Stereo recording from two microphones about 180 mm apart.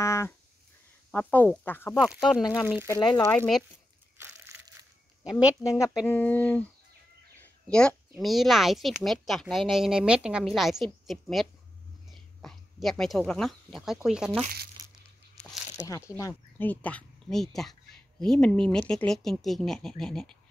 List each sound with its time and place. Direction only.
0.0 s a sound: 15° left (ahead or behind)
1.1 s speech: 10° left (ahead or behind)
2.0 s speech: centre (ahead or behind)
2.4 s speech: 20° left (ahead or behind)
3.3 s speech: 5° left (ahead or behind)
4.5 s crushing: 10° right (ahead or behind)
5.6 s speech: 15° left (ahead or behind); by 14.4 s 5° right (ahead or behind)
16.2 s speech: 15° left (ahead or behind)